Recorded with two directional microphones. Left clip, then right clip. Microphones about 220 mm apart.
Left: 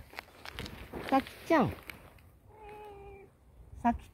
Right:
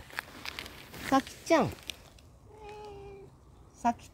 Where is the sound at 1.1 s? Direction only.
15° right (ahead or behind).